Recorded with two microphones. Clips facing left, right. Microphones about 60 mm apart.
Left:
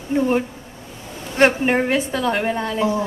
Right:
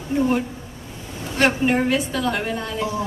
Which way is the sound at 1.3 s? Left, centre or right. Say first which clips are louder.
Left 3 dB; left.